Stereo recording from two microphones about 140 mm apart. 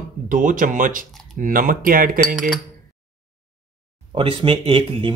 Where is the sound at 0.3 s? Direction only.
70° right (ahead or behind); by 2.0 s 85° right.